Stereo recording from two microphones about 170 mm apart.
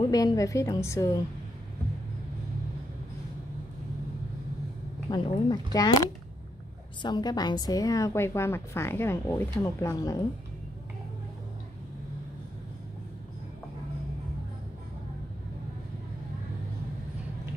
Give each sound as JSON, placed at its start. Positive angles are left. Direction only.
{"t": 0.1, "sound": "a woman's voice", "side_deg": 20}
{"t": 5.1, "sound": "a woman's voice", "side_deg": 25}